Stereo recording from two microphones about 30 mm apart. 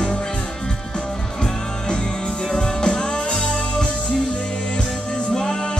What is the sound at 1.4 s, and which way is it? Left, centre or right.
Music, left.